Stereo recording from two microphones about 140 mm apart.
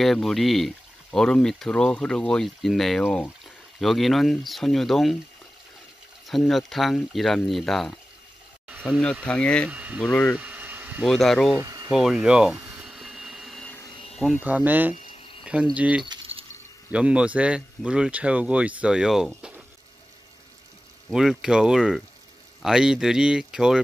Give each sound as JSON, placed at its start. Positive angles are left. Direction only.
{"t": 0.0, "sound": "speech", "side_deg": 0}
{"t": 6.2, "sound": "speech", "side_deg": 0}
{"t": 9.0, "sound": "speech", "side_deg": 10}
{"t": 9.7, "sound": "speech", "side_deg": -10}
{"t": 10.0, "sound": "speech", "side_deg": 10}
{"t": 10.3, "sound": "a sound", "side_deg": -10}
{"t": 11.1, "sound": "speech", "side_deg": 0}
{"t": 11.5, "sound": "speech", "side_deg": -25}
{"t": 11.9, "sound": "a sound", "side_deg": -5}
{"t": 14.3, "sound": "speech", "side_deg": -10}
{"t": 21.1, "sound": "speech", "side_deg": -5}